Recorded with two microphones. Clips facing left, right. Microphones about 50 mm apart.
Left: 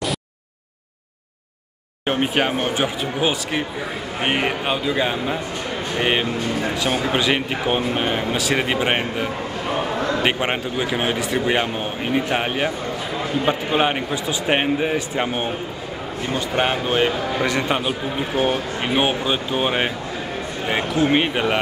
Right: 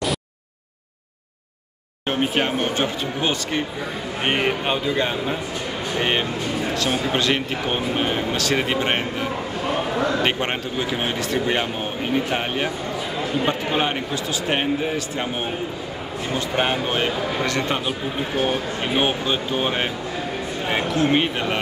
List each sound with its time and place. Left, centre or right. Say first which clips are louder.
2.0 s a man's voice: left 2 dB; centre
16.3 s speech: left 1 dB; centre
18.9 s speech: left 1 dB; centre